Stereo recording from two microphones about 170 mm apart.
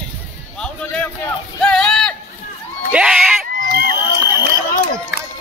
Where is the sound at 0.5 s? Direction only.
5° left (ahead or behind); by 4.4 s 15° right (ahead or behind).